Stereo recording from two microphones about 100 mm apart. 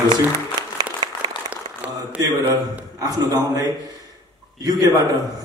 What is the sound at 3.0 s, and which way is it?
Speech, 40° right (ahead or behind).